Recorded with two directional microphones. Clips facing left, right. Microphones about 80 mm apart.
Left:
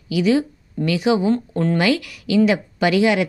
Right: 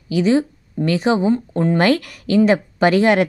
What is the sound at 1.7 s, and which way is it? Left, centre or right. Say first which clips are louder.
A woman's voice: right 4 dB; right.